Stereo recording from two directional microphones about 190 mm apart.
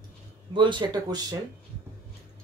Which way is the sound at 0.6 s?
25° right (ahead or behind).